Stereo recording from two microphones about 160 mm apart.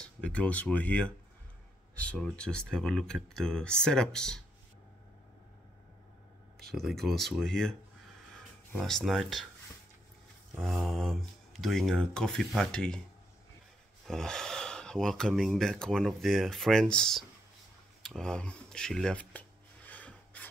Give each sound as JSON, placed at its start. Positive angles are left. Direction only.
{"t": 0.0, "sound": "speech", "side_deg": 5}
{"t": 6.7, "sound": "speech", "side_deg": 0}
{"t": 10.6, "sound": "speech", "side_deg": 0}
{"t": 14.0, "sound": "speech", "side_deg": 5}
{"t": 18.0, "sound": "a sound", "side_deg": 5}